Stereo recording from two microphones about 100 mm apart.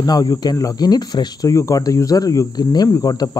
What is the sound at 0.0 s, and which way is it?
Speech, 40° left (ahead or behind).